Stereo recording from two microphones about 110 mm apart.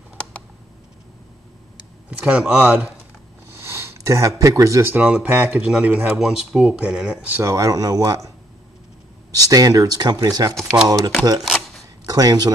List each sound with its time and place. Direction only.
2.0 s speech: 10° right (ahead or behind)
3.5 s a sound: 20° right (ahead or behind)
4.9 s speech: 10° right (ahead or behind)
7.4 s speech: 30° right (ahead or behind)
9.3 s speech: 35° right (ahead or behind)
12.1 s speech: 35° right (ahead or behind)